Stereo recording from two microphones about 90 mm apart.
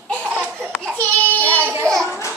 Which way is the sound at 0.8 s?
15° left (ahead or behind).